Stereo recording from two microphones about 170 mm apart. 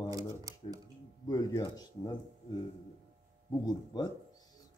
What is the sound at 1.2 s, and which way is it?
Speech, 20° left (ahead or behind).